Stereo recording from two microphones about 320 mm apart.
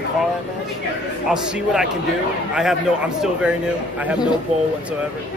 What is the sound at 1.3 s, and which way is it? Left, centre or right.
Speech, centre.